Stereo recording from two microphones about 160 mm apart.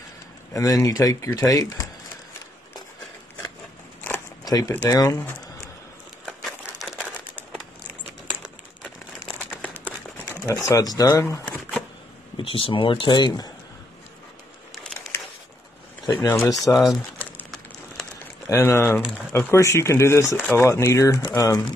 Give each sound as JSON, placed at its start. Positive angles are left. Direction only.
{"t": 0.5, "sound": "speech", "side_deg": 20}
{"t": 4.5, "sound": "speech", "side_deg": 25}
{"t": 6.6, "sound": "crumpling", "side_deg": -5}
{"t": 9.5, "sound": "a sound", "side_deg": 10}
{"t": 10.4, "sound": "speech", "side_deg": 20}
{"t": 12.4, "sound": "speech", "side_deg": 35}
{"t": 16.1, "sound": "speech", "side_deg": 20}
{"t": 16.5, "sound": "speech", "side_deg": 0}
{"t": 18.5, "sound": "speech", "side_deg": 15}